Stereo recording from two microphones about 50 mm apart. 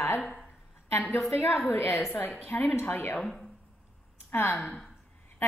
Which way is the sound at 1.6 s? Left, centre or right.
Left.